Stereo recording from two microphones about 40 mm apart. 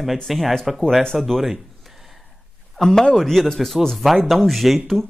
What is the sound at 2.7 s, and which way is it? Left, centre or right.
Speech, centre.